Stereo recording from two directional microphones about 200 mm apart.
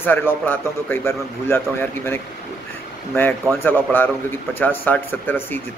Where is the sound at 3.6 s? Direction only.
10° left (ahead or behind).